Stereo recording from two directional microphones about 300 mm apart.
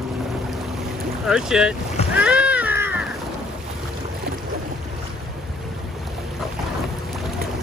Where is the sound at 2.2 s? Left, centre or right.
Centre.